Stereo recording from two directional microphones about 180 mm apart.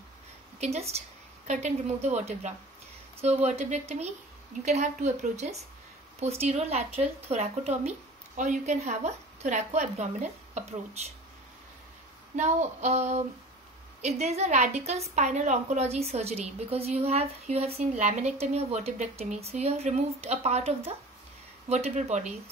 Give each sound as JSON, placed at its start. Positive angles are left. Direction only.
{"t": 0.6, "sound": "a woman's voice", "side_deg": -35}
{"t": 12.4, "sound": "a woman's voice", "side_deg": -40}